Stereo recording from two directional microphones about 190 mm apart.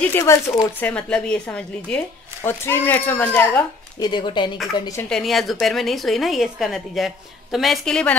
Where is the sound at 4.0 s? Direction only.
25° left (ahead or behind).